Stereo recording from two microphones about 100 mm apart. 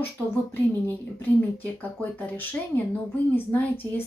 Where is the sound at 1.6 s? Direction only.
20° left (ahead or behind).